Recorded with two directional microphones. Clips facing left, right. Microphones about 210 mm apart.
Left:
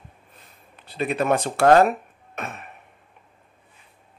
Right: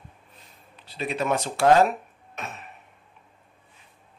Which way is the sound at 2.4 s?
55° left (ahead or behind).